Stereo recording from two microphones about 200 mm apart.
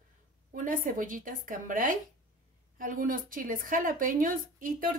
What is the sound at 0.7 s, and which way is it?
Speech, 40° right (ahead or behind).